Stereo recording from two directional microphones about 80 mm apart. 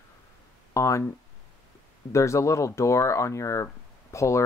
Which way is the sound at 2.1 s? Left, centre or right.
Left.